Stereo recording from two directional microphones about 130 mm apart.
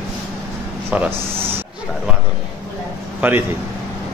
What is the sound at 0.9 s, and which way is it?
Speech, 15° right (ahead or behind).